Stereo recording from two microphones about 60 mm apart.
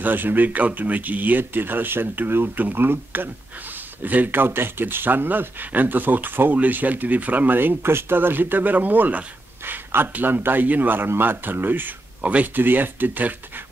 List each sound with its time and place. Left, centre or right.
0.0 s speech: right
12.2 s speech: right
12.5 s speech: right